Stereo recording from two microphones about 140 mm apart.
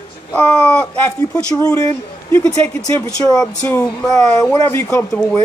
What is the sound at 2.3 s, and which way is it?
A woman's voice, 15° left (ahead or behind).